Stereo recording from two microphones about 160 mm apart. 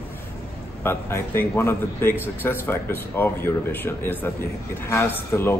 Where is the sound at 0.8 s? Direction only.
15° left (ahead or behind).